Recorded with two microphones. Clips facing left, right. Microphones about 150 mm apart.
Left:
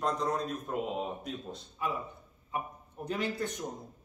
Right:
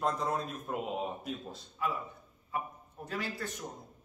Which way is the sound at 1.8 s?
20° left (ahead or behind).